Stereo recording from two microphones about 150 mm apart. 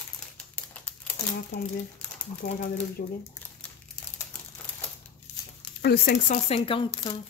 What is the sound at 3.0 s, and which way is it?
Speech, 90° left.